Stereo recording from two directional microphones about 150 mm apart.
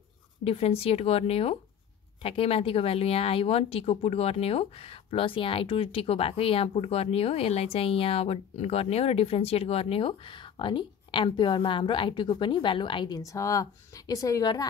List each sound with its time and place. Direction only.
0.4 s speech: 40° left (ahead or behind)